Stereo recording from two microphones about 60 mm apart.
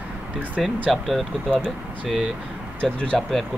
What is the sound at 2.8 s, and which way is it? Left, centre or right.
Speech, centre.